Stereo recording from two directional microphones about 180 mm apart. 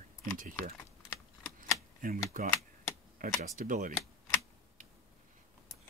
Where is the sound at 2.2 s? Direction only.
40° right (ahead or behind).